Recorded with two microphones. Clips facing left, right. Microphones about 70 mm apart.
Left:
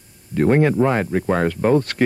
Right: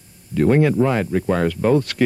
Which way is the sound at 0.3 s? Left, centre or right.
Left.